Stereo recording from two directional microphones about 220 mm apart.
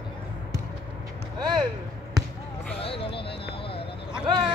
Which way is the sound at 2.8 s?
25° left (ahead or behind).